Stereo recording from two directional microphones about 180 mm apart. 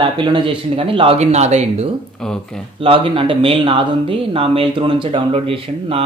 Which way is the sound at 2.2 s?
5° left (ahead or behind).